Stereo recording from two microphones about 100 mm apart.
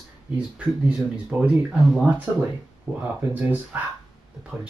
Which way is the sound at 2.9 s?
15° right (ahead or behind).